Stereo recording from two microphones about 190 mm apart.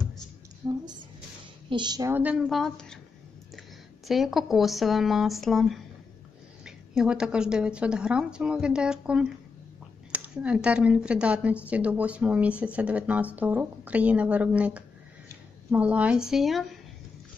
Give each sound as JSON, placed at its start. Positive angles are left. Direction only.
{"t": 0.6, "sound": "speech", "side_deg": -20}
{"t": 4.1, "sound": "a woman's voice", "side_deg": 0}